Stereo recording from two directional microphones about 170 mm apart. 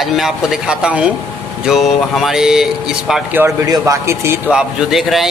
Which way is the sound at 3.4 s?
20° right (ahead or behind).